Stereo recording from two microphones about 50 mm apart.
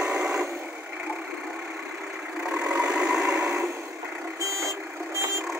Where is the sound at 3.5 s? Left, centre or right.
Right.